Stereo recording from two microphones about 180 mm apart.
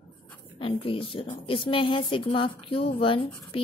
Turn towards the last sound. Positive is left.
turn(degrees=30)  # may be behind; listen again after turning